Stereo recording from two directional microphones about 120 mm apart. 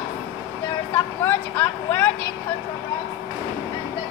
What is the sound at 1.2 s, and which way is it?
Vehicle, 15° left (ahead or behind).